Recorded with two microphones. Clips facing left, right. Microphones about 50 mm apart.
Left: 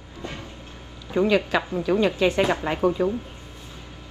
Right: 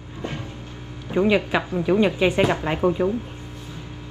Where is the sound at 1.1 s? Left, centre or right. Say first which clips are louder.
Right 1 dB; centre.